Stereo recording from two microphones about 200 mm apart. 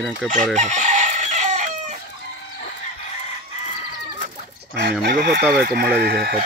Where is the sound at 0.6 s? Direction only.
35° right (ahead or behind).